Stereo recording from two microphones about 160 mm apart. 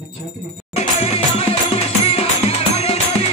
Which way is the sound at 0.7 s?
40° left (ahead or behind).